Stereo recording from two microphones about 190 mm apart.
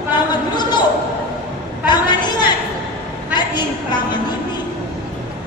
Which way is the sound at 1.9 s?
25° left (ahead or behind).